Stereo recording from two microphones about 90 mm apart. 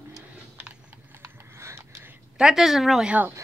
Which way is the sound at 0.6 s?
25° right (ahead or behind).